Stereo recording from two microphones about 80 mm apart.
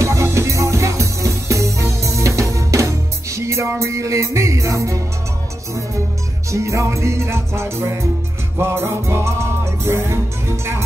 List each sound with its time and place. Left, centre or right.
0.0 s music: right
6.5 s music: right